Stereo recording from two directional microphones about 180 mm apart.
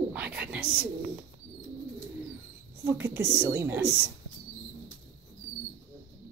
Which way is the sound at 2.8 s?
15° right (ahead or behind).